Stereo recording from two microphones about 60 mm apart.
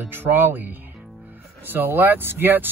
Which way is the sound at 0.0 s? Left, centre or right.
Right.